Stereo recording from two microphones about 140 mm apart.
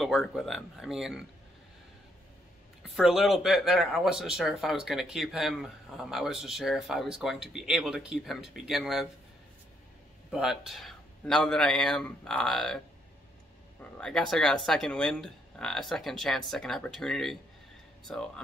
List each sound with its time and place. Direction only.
0.0 s speech: centre (ahead or behind)
3.0 s speech: centre (ahead or behind)
10.3 s speech: 5° right (ahead or behind)
13.9 s speech: 5° left (ahead or behind)